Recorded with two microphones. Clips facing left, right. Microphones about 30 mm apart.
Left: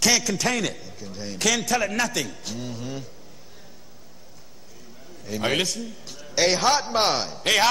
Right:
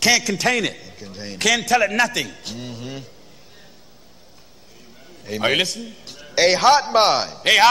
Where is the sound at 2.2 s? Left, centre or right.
Centre.